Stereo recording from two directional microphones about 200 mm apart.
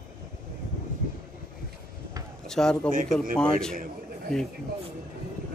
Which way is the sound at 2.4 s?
5° left (ahead or behind).